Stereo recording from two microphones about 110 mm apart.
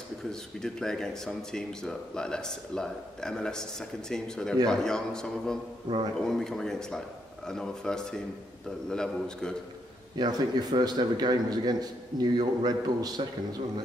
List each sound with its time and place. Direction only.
0.3 s a man's voice: 5° left (ahead or behind)
10.1 s a man's voice: 40° right (ahead or behind)